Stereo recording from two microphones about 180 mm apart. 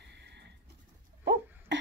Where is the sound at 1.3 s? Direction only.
80° right.